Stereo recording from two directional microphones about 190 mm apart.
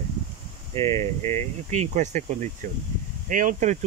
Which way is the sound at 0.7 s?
30° right (ahead or behind).